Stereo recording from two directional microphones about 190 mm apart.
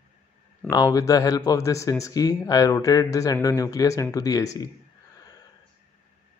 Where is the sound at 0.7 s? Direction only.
20° left (ahead or behind).